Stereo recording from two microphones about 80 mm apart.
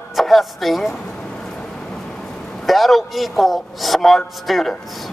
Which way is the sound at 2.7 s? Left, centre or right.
Centre.